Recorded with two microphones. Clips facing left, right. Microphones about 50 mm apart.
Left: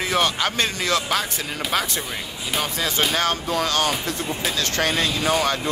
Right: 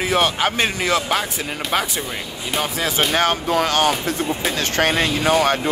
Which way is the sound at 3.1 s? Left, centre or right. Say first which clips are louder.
Right 4 dB; right.